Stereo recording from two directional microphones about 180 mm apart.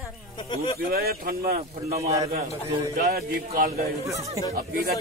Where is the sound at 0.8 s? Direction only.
55° right (ahead or behind).